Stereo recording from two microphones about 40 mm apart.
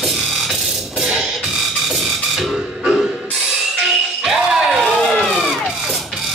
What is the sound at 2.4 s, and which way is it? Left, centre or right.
Music, centre.